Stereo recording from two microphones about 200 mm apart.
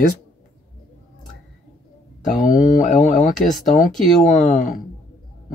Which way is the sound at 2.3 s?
40° left (ahead or behind).